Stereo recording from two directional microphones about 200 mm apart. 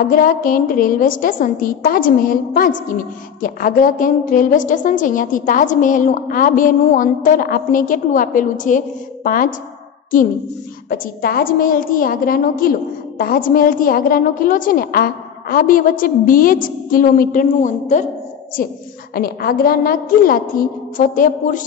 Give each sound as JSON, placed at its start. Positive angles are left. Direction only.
{"t": 0.1, "sound": "a woman's voice", "side_deg": 45}
{"t": 10.9, "sound": "a woman's voice", "side_deg": 45}
{"t": 19.1, "sound": "a woman's voice", "side_deg": 50}